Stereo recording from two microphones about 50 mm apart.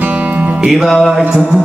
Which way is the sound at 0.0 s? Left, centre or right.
Right.